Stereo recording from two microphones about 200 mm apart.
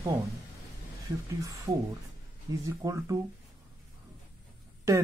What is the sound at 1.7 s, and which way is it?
Speech, 15° right (ahead or behind).